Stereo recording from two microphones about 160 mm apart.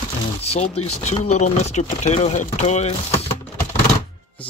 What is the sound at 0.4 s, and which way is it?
Speech, 40° left (ahead or behind).